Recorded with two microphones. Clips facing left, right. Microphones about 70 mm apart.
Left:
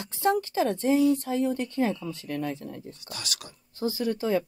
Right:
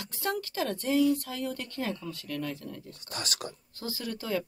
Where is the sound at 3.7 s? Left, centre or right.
Left.